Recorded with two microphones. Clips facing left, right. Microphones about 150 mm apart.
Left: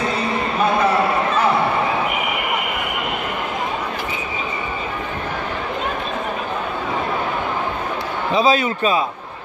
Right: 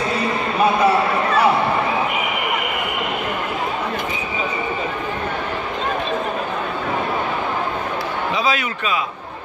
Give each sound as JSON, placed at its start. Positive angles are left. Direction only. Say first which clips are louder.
{"t": 8.4, "sound": "a man's voice", "louder": "left 9 dB", "side_deg": 30}